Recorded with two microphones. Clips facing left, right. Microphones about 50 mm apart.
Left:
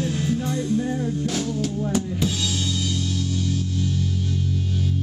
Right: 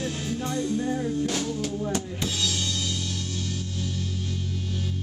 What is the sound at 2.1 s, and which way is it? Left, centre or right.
Drum kit, centre.